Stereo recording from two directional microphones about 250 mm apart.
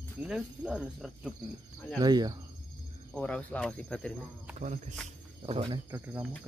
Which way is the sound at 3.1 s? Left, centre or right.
Centre.